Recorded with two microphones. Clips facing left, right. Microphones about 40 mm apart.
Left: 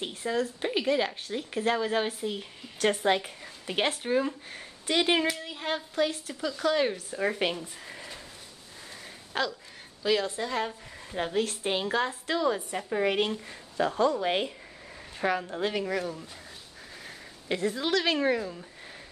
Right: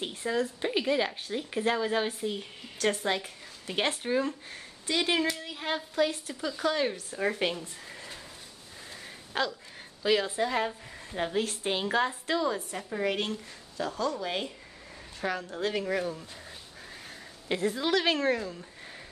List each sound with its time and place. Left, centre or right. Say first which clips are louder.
0.0 s speech: even; centre
2.8 s a woman's voice: left 3 dB; centre
3.7 s speech: left 1 dB; centre
4.8 s speech: left 3 dB; left
5.2 s speech: left 1 dB; centre
6.7 s a woman's voice: left 3 dB; centre
9.3 s speech: even; centre
12.4 s a woman's voice: left 4 dB; centre
15.1 s a woman's voice: left 4 dB; centre
15.9 s speech: right 1 dB; centre
17.5 s speech: even; centre